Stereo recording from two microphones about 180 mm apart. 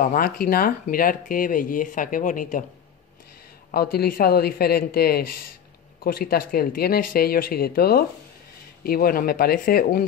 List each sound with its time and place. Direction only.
0.0 s speech: 50° left (ahead or behind)
3.7 s speech: 60° left (ahead or behind)